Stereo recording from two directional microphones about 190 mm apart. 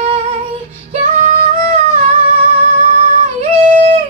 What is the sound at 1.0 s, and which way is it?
Singing, 40° right (ahead or behind).